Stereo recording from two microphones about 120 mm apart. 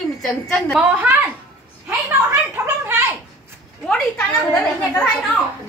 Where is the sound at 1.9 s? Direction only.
20° right (ahead or behind).